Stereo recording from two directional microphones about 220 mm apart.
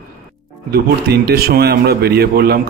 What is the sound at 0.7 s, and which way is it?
A man's voice, 45° right (ahead or behind).